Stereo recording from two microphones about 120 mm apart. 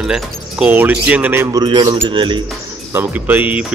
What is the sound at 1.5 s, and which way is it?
Speech, 35° right (ahead or behind).